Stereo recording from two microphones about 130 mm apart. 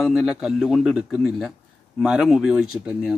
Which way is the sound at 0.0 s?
Centre (ahead or behind).